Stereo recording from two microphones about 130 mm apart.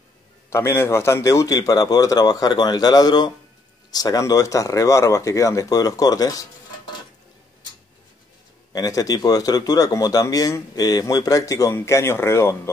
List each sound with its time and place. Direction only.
0.5 s speech: 20° left (ahead or behind)
8.7 s speech: 30° left (ahead or behind)